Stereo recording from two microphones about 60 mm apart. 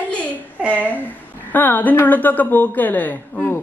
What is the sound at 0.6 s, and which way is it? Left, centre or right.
Speech, right.